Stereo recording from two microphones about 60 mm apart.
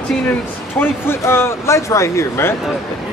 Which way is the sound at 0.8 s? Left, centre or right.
Left.